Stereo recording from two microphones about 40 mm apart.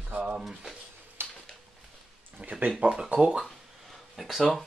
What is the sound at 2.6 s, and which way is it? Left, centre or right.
Speech, right.